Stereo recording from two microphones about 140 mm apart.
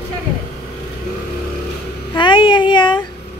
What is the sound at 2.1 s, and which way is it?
Speech, 35° left (ahead or behind).